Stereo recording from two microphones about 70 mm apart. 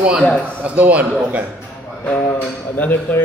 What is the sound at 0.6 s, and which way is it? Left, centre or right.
Speech, right.